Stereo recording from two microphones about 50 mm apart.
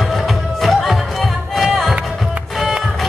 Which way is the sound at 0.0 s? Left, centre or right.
Centre.